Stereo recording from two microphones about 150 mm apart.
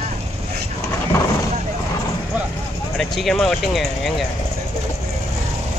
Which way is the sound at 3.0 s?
Centre (ahead or behind).